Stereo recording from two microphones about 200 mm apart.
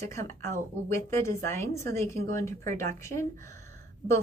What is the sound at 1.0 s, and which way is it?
Speech, 15° left (ahead or behind).